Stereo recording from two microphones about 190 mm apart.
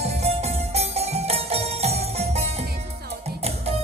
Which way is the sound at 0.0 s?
35° right (ahead or behind).